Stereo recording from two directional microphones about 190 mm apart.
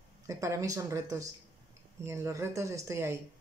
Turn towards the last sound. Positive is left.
turn(degrees=-15)  # may be behind; listen again after turning